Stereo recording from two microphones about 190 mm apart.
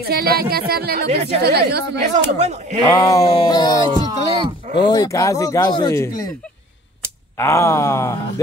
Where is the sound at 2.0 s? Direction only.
35° right (ahead or behind).